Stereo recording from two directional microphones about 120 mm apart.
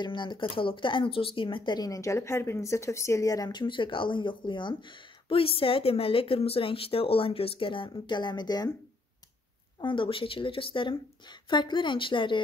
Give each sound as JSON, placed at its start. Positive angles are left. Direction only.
{"t": 0.0, "sound": "speech", "side_deg": 40}
{"t": 9.8, "sound": "speech", "side_deg": 45}